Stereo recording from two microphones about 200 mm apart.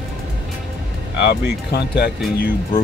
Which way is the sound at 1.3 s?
50° left (ahead or behind).